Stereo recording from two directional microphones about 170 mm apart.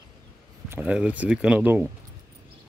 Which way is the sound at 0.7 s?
10° right (ahead or behind).